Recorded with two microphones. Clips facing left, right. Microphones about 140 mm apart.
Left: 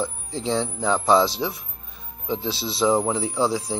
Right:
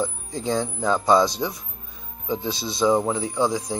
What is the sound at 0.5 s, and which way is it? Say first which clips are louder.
Speech: even; centre (ahead or behind).